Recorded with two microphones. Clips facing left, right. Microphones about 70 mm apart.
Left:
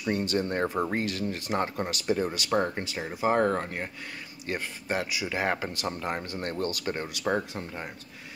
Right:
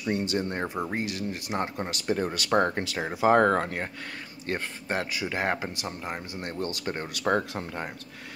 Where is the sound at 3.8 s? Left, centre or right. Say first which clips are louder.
Right 2 dB; right.